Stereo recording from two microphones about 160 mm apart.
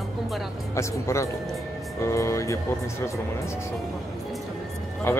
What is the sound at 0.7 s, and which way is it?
Speech, 20° left (ahead or behind).